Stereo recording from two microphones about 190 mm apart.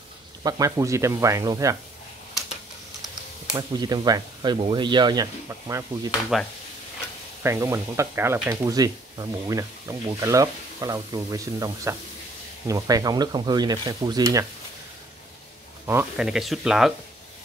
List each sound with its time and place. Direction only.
0.4 s speech: 20° right (ahead or behind)
3.5 s speech: 20° right (ahead or behind)
6.3 s speech: centre (ahead or behind)
7.4 s speech: 15° right (ahead or behind)
15.9 s speech: 5° right (ahead or behind)